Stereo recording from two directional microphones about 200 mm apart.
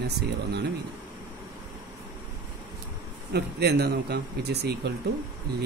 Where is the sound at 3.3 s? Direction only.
55° right (ahead or behind).